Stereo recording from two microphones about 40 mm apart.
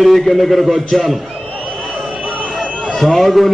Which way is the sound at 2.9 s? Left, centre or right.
Centre.